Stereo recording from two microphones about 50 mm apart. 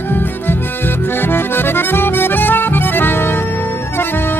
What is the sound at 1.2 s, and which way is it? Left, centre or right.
Accordion, left.